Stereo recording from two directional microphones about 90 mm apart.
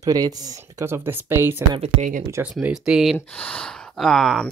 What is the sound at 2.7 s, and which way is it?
Speech, 5° right (ahead or behind).